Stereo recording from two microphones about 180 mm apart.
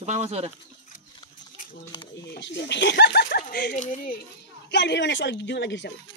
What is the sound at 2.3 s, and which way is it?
Speech, 80° left.